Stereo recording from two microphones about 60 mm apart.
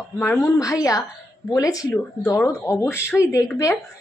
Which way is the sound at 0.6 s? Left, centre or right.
Left.